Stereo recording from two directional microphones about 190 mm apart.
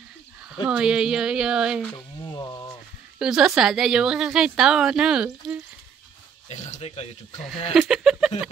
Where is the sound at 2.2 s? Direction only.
25° left (ahead or behind).